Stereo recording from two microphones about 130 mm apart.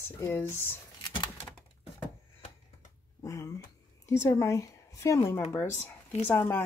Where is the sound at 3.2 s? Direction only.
25° left (ahead or behind).